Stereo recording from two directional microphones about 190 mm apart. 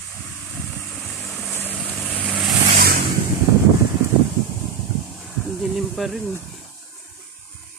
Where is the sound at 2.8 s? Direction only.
55° right (ahead or behind).